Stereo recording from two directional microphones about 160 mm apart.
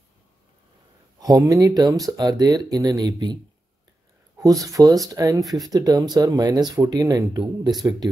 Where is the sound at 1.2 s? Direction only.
20° right (ahead or behind).